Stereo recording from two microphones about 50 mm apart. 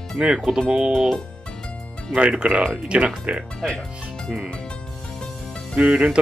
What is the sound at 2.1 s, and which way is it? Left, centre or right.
Speech, centre.